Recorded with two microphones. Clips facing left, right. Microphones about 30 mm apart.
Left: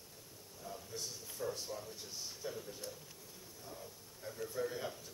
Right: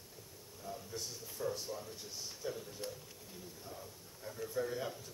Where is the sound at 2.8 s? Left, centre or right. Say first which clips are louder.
Right 3 dB; right.